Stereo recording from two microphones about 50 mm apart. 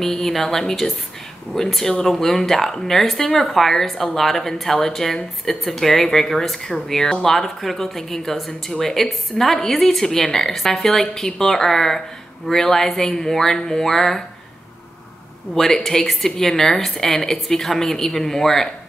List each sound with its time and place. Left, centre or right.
0.0 s speech: centre
15.5 s speech: centre